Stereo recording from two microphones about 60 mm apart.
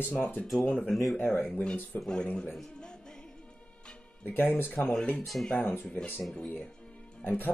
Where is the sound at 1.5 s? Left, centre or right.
Centre.